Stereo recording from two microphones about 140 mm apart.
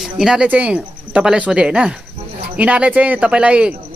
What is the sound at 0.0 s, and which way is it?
A man's voice, 5° right (ahead or behind).